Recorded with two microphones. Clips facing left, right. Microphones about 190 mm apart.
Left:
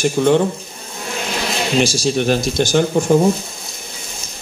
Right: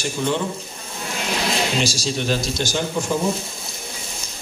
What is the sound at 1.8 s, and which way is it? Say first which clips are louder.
Speech: left 7 dB; 55° left (ahead or behind).